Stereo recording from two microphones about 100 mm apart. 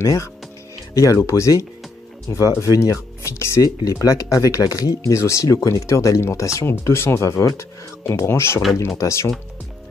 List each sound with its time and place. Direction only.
0.0 s speech: 30° left (ahead or behind)